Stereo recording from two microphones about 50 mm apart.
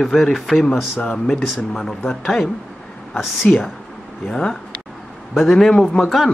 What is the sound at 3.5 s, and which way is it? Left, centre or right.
Speech, left.